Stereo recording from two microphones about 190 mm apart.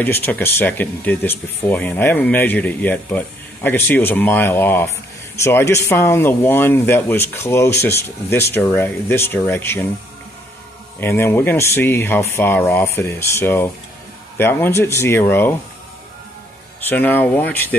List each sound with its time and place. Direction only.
0.0 s speech: 10° left (ahead or behind)
11.0 s speech: 10° left (ahead or behind)
16.9 s speech: 10° left (ahead or behind)